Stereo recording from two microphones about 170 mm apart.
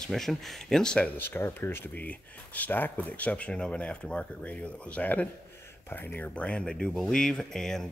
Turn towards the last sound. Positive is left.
turn(degrees=5)  # may be behind; listen again after turning